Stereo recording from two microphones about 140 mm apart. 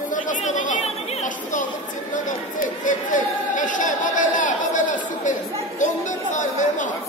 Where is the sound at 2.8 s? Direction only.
65° left (ahead or behind).